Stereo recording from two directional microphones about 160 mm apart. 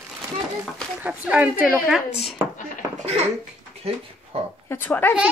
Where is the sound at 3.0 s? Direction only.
40° right (ahead or behind).